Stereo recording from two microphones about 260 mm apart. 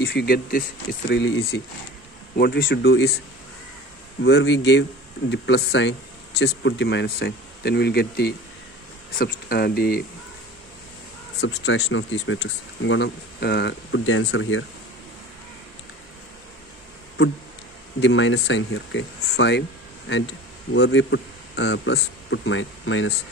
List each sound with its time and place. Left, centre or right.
0.0 s speech: left
4.2 s speech: left
11.4 s speech: left
18.0 s speech: left
20.7 s speech: left